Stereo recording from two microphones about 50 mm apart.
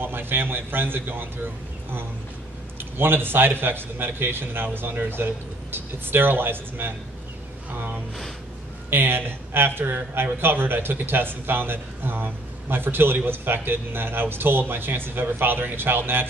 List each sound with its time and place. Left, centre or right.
0.0 s speech: right
2.8 s speech: right
8.9 s speech: right